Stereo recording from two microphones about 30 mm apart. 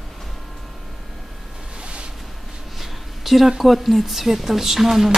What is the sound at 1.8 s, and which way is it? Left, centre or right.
Ocean, right.